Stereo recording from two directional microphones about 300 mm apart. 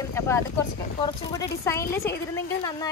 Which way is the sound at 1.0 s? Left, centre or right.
Centre.